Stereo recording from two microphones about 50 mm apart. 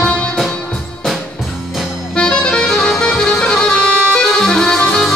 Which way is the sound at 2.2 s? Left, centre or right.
Left.